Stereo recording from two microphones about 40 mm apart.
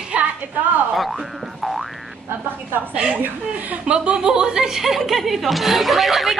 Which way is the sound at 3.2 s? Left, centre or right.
Right.